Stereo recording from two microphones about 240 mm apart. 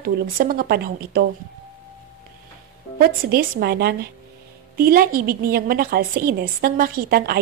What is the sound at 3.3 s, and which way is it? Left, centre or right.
A woman's voice, right.